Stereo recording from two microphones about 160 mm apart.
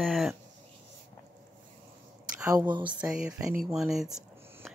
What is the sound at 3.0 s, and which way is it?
Speech, 5° right (ahead or behind).